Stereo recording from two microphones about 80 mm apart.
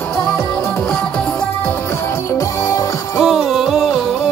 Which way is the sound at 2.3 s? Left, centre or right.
Left.